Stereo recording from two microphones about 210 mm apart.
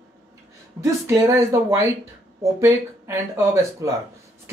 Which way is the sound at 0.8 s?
15° right (ahead or behind).